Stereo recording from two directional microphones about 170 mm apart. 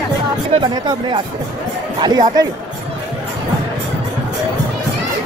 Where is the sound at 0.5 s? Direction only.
30° right (ahead or behind).